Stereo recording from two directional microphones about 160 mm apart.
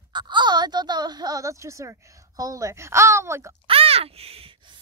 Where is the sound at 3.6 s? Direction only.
35° right (ahead or behind).